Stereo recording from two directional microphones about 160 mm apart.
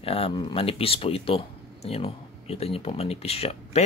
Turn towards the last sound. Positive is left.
turn(degrees=40)  # may be behind; listen again after turning